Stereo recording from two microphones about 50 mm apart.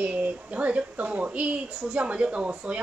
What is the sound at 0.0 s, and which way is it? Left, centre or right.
A woman's voice, right.